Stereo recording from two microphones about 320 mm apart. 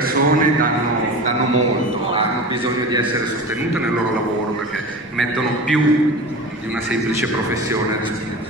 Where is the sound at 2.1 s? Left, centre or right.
Centre.